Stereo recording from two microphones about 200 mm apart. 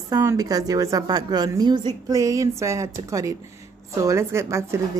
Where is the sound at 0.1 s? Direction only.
15° right (ahead or behind).